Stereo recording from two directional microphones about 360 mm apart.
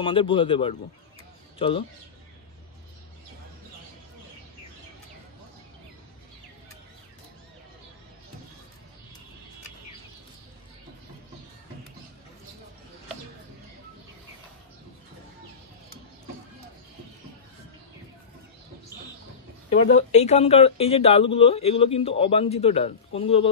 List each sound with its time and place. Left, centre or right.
0.0 s a man's voice: centre
19.7 s a man's voice: centre